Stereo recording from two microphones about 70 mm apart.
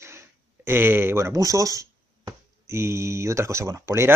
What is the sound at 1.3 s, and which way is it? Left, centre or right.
Speech, right.